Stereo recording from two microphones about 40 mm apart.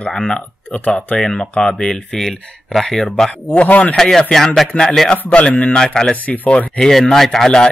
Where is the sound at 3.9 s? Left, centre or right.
Centre.